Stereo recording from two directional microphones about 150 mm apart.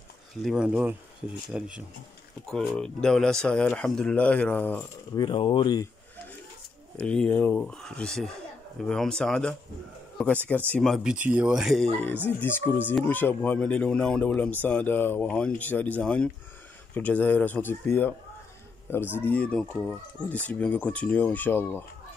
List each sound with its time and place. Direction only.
0.3 s speech: centre (ahead or behind)
2.5 s speech: 5° left (ahead or behind)
5.1 s speech: 30° left (ahead or behind)
7.0 s speech: 10° left (ahead or behind)
11.1 s speech: 10° right (ahead or behind)
12.4 s speech: 15° left (ahead or behind)